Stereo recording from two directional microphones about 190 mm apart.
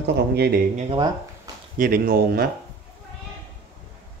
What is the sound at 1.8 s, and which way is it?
Speech, 50° right (ahead or behind).